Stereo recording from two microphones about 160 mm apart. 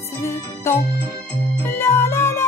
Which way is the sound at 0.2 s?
20° left (ahead or behind).